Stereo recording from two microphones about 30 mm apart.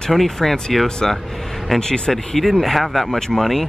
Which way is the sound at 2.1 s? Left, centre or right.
Centre.